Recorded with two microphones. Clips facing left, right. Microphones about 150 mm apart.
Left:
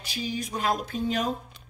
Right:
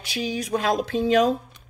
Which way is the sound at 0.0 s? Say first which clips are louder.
Right 4 dB; 85° right.